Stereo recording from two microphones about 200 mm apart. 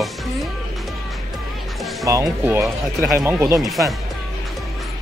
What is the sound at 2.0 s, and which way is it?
Speech, 15° right (ahead or behind).